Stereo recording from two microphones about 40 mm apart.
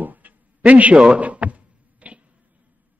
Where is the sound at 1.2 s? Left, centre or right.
Right.